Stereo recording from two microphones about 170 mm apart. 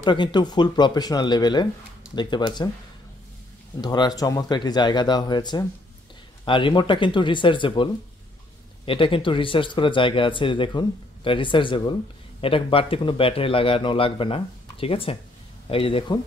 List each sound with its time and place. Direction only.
0.0 s speech: 25° left (ahead or behind)
3.8 s a man's voice: 25° left (ahead or behind)